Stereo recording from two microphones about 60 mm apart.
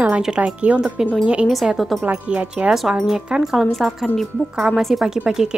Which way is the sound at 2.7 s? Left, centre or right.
Centre.